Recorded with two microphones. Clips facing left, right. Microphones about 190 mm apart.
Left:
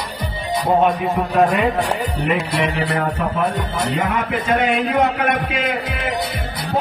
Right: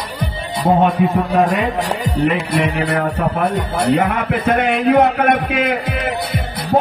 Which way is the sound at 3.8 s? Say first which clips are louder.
Right 6 dB; 60° right (ahead or behind).